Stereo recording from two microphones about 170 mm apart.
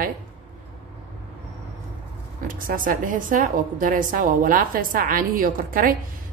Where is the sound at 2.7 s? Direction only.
50° right (ahead or behind).